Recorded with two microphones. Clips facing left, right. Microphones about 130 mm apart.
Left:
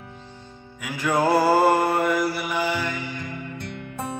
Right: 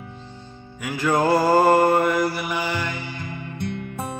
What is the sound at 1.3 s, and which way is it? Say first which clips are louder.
Mantra: right 2 dB; 5° left (ahead or behind).